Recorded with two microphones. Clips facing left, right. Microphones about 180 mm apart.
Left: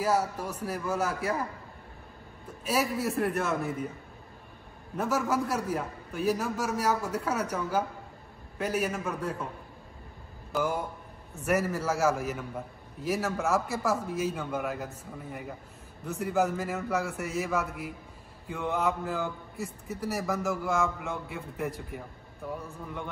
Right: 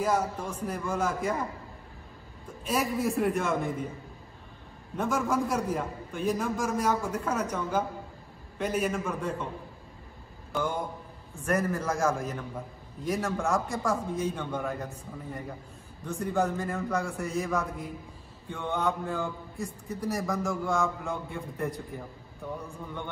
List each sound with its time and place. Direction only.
0.0 s a man's voice: 5° left (ahead or behind)
2.6 s a man's voice: 5° left (ahead or behind)
4.9 s a man's voice: 5° left (ahead or behind)
10.5 s a man's voice: 5° left (ahead or behind)
16.1 s a man's voice: 5° left (ahead or behind)